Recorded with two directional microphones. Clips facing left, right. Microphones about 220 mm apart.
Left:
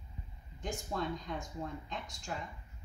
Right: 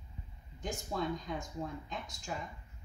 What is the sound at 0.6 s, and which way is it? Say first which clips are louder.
Speech: right 1 dB; centre (ahead or behind).